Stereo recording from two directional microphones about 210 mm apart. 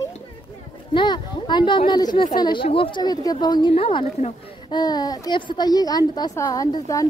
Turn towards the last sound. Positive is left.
turn(degrees=15)  # may be behind; listen again after turning